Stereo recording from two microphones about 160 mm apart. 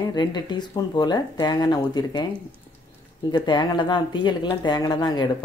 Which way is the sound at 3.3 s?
30° left (ahead or behind).